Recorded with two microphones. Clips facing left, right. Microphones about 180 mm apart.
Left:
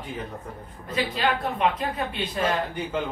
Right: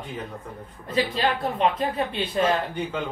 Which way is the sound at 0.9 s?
30° right (ahead or behind).